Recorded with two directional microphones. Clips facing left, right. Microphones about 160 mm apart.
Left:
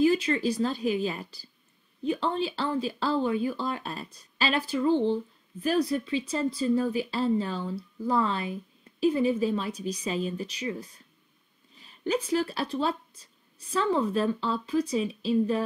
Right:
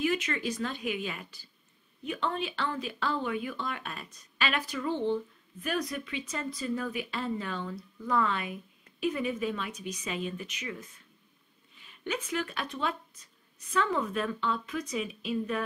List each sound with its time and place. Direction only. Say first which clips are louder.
0.0 s speech: left 7 dB; 30° left (ahead or behind)